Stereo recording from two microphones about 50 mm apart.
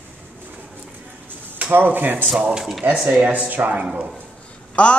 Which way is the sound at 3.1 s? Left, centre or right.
Right.